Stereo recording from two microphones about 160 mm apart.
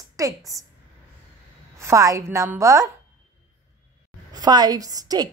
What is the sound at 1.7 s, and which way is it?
Speech, 20° right (ahead or behind).